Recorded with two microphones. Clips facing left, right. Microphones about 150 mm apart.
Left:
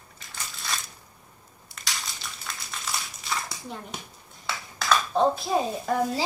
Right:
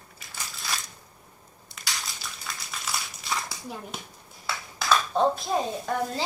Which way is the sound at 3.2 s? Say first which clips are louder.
Even; centre (ahead or behind).